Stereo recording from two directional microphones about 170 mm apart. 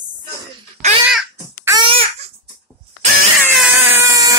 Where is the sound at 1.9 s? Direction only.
35° right (ahead or behind).